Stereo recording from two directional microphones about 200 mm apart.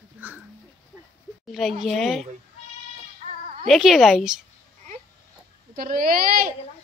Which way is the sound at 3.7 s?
Centre (ahead or behind).